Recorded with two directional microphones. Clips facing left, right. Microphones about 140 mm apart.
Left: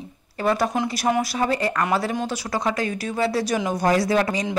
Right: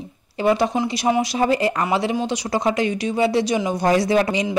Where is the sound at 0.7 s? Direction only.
5° right (ahead or behind).